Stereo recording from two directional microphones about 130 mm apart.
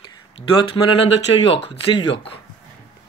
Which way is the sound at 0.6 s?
45° left (ahead or behind).